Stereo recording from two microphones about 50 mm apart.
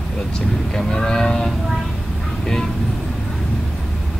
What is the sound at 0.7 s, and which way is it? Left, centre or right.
Speech, centre.